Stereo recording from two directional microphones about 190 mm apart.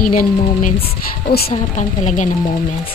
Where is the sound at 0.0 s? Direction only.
45° left (ahead or behind).